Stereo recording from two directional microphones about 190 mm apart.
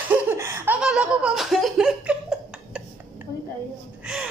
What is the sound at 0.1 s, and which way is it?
Laughter, 10° right (ahead or behind).